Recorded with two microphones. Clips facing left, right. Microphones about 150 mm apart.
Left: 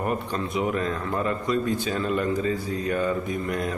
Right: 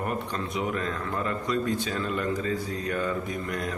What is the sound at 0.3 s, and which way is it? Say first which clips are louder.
A man's voice: left 4 dB; 10° left (ahead or behind).